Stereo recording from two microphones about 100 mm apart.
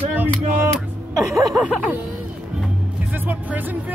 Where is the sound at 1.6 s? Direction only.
15° right (ahead or behind).